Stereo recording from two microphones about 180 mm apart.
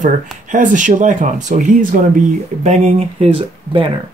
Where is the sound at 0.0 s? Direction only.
45° right (ahead or behind); by 3.9 s 30° right (ahead or behind).